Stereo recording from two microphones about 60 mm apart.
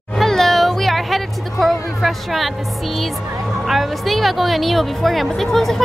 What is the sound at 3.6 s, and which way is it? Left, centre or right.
Speech, centre.